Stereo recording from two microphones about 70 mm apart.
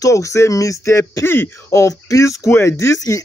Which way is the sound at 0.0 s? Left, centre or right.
Left.